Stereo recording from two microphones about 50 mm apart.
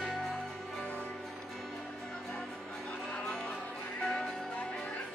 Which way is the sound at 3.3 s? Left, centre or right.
Centre.